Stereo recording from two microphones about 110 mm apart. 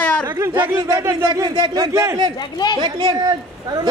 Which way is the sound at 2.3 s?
40° left (ahead or behind).